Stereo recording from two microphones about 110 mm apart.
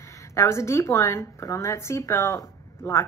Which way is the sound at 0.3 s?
25° left (ahead or behind).